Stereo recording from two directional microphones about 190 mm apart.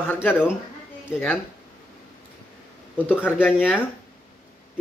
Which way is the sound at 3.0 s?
10° left (ahead or behind).